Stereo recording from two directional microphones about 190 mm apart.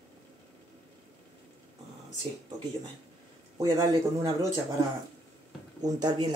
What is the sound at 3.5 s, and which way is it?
Speech, 15° right (ahead or behind).